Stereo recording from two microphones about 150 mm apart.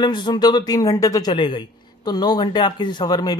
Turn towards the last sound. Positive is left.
turn(degrees=25)  # may be behind; listen again after turning